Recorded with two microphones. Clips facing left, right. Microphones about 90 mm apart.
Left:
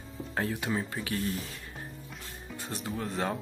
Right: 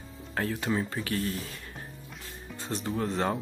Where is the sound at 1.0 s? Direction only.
15° left (ahead or behind).